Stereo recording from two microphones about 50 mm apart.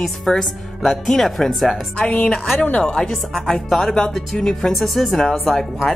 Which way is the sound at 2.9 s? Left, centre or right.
Centre.